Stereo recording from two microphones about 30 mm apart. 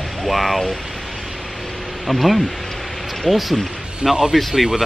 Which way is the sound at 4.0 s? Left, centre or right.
Centre.